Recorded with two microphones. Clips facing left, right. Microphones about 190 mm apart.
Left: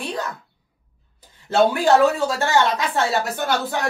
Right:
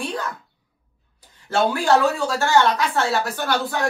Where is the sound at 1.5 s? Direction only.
20° left (ahead or behind).